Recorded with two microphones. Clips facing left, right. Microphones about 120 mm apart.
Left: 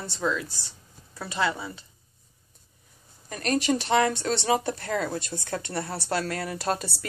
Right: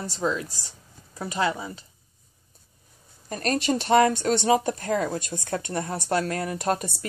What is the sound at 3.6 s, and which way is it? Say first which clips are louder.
Speech: even; 25° right (ahead or behind).